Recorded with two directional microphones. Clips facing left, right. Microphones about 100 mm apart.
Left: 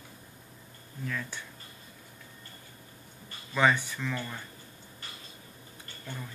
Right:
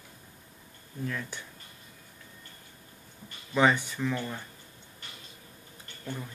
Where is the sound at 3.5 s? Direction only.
20° right (ahead or behind).